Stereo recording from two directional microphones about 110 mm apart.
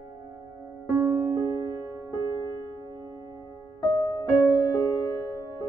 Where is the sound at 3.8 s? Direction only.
40° left (ahead or behind).